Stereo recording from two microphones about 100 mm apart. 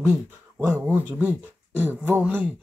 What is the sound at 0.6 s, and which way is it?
Speech, 25° right (ahead or behind).